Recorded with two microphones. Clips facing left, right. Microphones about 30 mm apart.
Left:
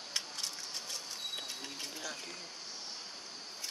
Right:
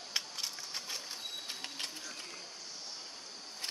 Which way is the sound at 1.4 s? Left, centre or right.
Right.